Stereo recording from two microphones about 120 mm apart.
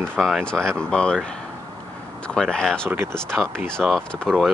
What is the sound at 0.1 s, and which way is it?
Speech, 5° left (ahead or behind).